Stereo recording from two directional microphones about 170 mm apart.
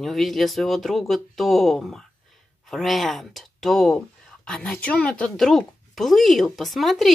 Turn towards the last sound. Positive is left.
turn(degrees=0)  # may be behind; listen again after turning